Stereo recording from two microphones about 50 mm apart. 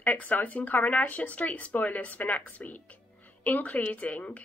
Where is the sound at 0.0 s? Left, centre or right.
Left.